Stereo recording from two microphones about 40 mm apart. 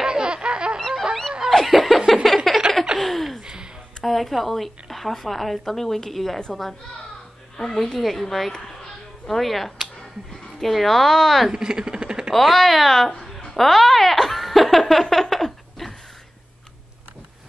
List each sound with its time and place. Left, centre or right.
0.0 s laughter: right
0.7 s fowl: centre
1.5 s laughter: centre
2.2 s a sound: centre
3.0 s laughter: centre
4.0 s speech: centre
7.5 s a woman's voice: centre
9.3 s speech: centre
11.5 s speech: centre
12.3 s speech: centre
13.1 s laughter: centre